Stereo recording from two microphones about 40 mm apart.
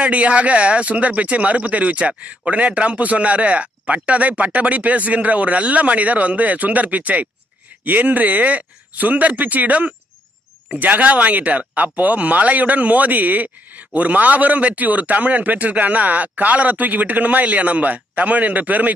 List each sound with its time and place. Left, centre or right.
0.1 s speech: right